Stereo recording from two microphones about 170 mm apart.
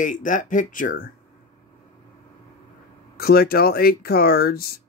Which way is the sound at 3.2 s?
65° left (ahead or behind).